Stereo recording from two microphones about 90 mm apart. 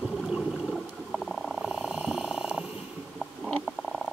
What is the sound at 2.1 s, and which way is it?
Purr, 10° right (ahead or behind).